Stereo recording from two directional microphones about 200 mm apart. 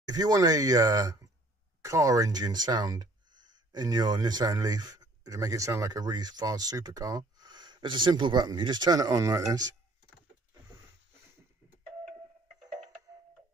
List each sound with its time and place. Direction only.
0.1 s speech: 20° right (ahead or behind)